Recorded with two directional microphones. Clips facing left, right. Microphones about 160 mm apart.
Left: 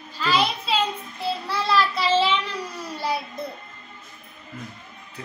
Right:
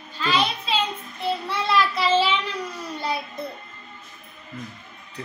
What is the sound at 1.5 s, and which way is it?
Child singing, centre (ahead or behind).